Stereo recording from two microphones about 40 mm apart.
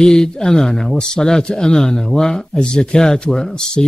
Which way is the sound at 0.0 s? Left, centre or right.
Centre.